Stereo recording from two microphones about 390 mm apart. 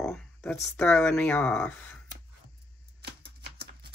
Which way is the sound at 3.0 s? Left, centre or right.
Right.